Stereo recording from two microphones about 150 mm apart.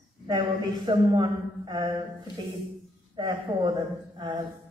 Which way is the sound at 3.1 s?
30° right (ahead or behind).